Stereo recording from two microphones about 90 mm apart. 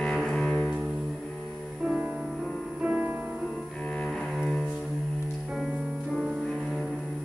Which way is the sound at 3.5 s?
5° left (ahead or behind).